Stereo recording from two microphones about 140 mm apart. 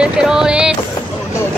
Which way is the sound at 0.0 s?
5° right (ahead or behind).